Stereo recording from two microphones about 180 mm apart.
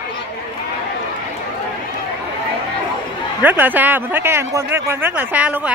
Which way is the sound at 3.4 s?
10° right (ahead or behind).